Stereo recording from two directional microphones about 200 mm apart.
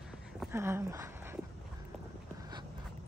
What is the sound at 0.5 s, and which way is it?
Speech, 10° right (ahead or behind).